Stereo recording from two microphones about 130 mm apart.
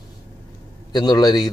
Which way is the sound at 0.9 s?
30° left (ahead or behind).